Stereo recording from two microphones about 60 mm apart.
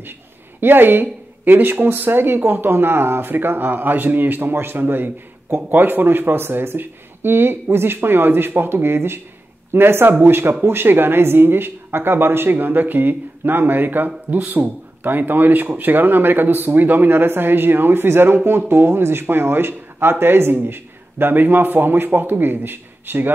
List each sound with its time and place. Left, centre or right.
0.6 s speech: right